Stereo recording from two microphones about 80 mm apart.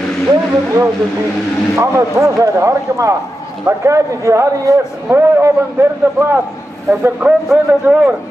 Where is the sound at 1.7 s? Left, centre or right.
Right.